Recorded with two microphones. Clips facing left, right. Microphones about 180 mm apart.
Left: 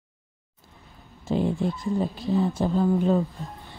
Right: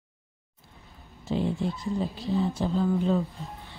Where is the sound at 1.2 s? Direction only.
50° left (ahead or behind).